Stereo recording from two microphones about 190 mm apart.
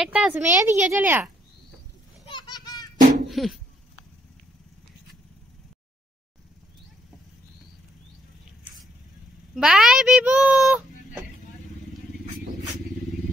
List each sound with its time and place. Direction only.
0.0 s a woman's voice: 5° right (ahead or behind)
2.2 s a sound: 25° left (ahead or behind)
3.3 s dog: centre (ahead or behind)
9.6 s a child's voice: 5° right (ahead or behind)